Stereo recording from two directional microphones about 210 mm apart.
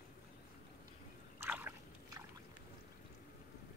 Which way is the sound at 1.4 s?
10° right (ahead or behind).